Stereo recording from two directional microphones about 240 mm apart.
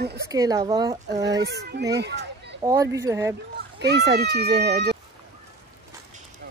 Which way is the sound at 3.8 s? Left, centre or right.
Right.